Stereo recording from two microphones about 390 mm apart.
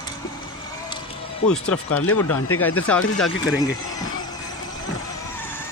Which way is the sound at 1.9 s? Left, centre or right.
Left.